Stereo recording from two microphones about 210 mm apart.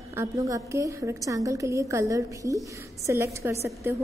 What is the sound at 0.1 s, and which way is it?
A woman's voice, 15° right (ahead or behind).